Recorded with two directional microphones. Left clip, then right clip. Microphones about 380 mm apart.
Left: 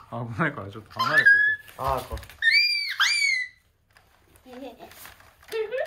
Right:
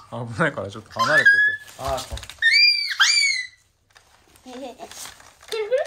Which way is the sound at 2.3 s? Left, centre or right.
Centre.